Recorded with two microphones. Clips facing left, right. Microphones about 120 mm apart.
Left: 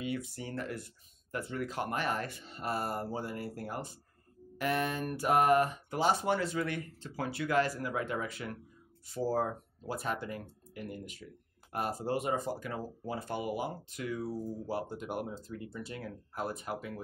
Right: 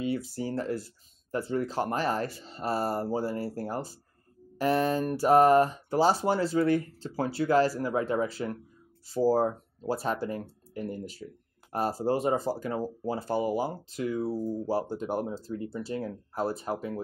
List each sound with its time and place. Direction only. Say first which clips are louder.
0.0 s speech: right 6 dB; 30° right (ahead or behind)